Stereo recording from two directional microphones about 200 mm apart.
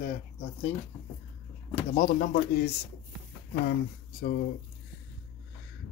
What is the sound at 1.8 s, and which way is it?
Speech, 40° left (ahead or behind).